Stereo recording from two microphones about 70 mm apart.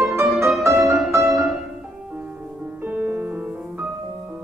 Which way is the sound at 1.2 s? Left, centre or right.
Centre.